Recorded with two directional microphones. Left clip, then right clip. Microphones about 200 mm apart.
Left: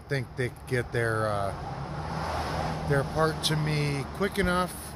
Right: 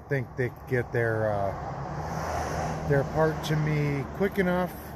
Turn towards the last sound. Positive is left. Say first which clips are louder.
# even
turn(degrees=5)  # may be behind; listen again after turning